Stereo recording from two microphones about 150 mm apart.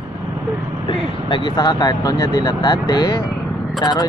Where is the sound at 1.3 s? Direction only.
30° left (ahead or behind).